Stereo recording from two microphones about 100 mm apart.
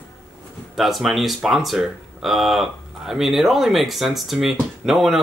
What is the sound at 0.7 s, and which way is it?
Speech, centre (ahead or behind).